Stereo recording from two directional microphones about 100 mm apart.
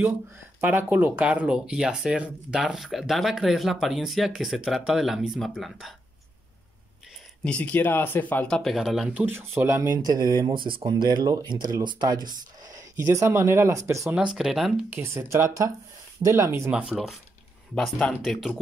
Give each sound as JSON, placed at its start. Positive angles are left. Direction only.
{"t": 0.6, "sound": "speech", "side_deg": -20}
{"t": 7.4, "sound": "speech", "side_deg": 15}
{"t": 8.7, "sound": "speech", "side_deg": -5}
{"t": 9.1, "sound": "speech", "side_deg": -20}
{"t": 14.1, "sound": "speech", "side_deg": -5}
{"t": 14.9, "sound": "speech", "side_deg": -25}
{"t": 16.7, "sound": "speech", "side_deg": -5}